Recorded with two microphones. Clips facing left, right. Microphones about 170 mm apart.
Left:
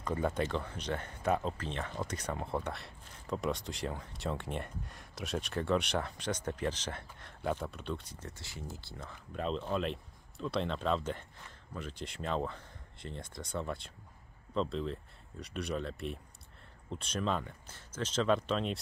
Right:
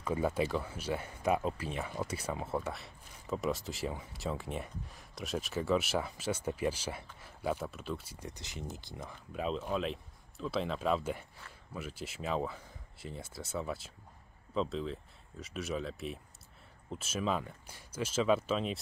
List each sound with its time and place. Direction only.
0.0 s speech: 5° right (ahead or behind)